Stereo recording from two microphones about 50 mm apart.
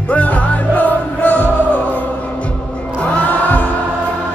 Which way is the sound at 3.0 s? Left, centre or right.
Left.